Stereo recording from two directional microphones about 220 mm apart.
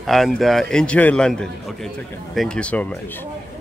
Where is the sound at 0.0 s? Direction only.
Centre (ahead or behind).